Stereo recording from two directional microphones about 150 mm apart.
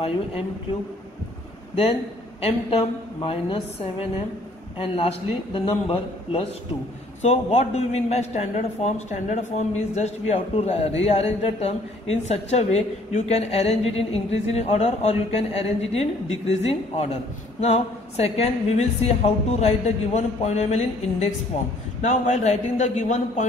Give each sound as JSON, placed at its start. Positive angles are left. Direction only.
{"t": 2.4, "sound": "a woman's voice", "side_deg": 35}